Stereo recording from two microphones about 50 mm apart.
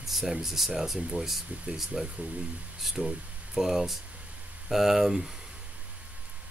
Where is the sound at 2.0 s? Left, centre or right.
Right.